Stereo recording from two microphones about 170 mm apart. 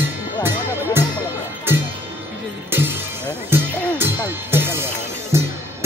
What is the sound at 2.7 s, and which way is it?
Music, 10° right (ahead or behind).